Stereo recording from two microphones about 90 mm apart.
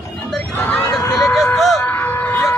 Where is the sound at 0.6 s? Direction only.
20° left (ahead or behind).